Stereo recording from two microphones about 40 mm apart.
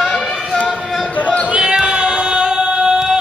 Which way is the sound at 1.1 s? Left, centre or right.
Left.